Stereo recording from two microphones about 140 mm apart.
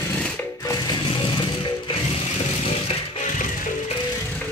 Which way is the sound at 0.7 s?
30° left (ahead or behind).